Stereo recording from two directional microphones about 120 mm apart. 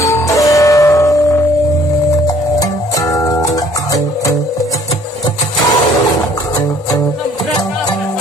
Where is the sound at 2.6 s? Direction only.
30° left (ahead or behind).